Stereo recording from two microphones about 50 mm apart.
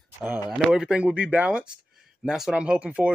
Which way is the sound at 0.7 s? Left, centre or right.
Centre.